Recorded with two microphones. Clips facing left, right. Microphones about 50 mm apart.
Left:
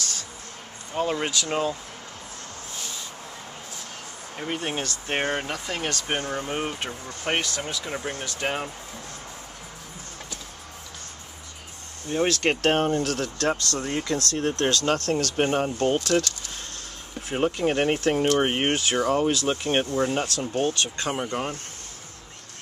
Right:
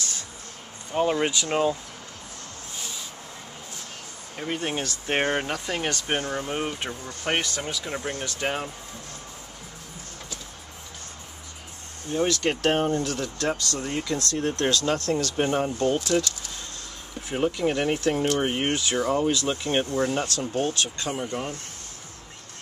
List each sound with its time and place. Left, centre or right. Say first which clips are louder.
0.9 s speech: right 2 dB; centre
4.4 s speech: even; centre
7.2 s speech: even; centre
12.3 s speech: left 2 dB; left
13.0 s speech: left 2 dB; left
13.6 s speech: left 1 dB; left
15.4 s speech: left 1 dB; left
17.3 s speech: left 1 dB; left